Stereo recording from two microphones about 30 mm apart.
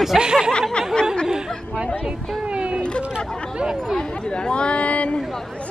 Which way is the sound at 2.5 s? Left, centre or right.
Right.